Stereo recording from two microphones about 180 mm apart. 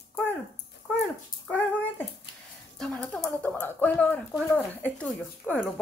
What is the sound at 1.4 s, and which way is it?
Speech, 5° left (ahead or behind).